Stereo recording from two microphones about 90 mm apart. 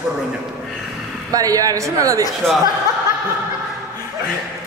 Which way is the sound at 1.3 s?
40° right (ahead or behind).